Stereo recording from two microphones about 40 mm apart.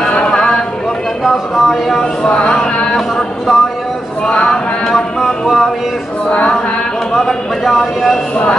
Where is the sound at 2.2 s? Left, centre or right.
Left.